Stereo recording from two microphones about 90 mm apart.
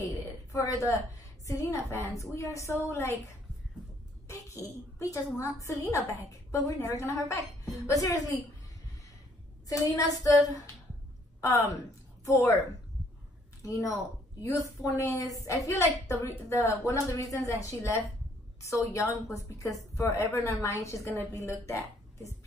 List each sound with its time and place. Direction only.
0.0 s a woman's voice: 40° left (ahead or behind)
4.3 s a woman's voice: 35° left (ahead or behind)
9.7 s a woman's voice: 40° left (ahead or behind)
11.4 s a woman's voice: 30° left (ahead or behind)
13.6 s a woman's voice: 40° left (ahead or behind)
15.1 s a woman's voice: 40° left (ahead or behind)